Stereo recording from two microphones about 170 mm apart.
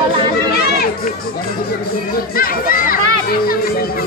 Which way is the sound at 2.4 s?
55° left (ahead or behind).